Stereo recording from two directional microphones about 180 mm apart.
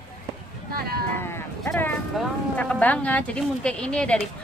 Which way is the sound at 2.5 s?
5° left (ahead or behind).